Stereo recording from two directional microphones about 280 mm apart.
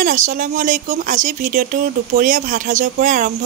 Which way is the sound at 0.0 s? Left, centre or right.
Right.